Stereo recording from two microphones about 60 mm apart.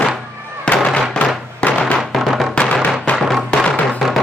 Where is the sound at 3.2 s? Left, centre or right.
Centre.